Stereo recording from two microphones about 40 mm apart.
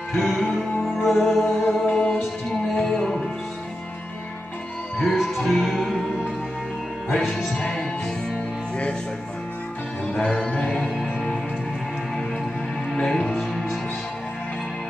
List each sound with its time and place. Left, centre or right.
0.1 s music: centre
1.9 s music: left
2.7 s music: centre
5.1 s music: centre
7.2 s music: centre
10.2 s a capella: left
10.7 s music: centre
12.9 s music: centre